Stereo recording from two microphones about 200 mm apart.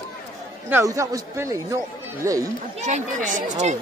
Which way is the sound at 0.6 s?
15° right (ahead or behind).